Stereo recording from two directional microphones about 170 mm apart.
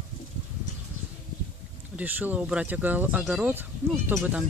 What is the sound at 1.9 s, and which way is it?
Speech, 10° right (ahead or behind).